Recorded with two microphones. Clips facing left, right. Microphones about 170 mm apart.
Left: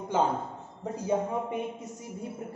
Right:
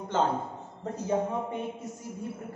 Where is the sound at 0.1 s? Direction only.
10° left (ahead or behind).